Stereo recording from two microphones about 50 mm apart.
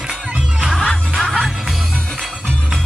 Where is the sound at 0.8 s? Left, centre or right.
Centre.